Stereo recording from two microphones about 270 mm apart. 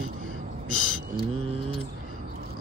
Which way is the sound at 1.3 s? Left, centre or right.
Right.